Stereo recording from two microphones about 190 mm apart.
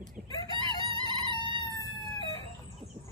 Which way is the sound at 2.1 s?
25° left (ahead or behind).